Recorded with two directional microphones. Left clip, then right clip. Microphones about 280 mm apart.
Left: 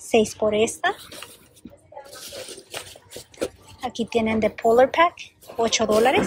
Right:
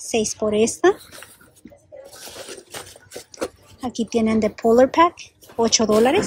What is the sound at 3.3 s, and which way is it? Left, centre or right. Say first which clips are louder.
Speech: even; centre.